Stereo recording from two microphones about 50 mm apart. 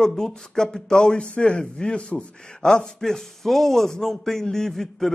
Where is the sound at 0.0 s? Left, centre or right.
Centre.